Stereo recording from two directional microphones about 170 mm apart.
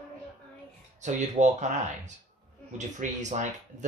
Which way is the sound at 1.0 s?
45° right (ahead or behind).